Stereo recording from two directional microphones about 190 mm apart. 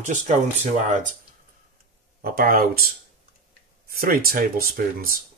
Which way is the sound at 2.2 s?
50° right (ahead or behind).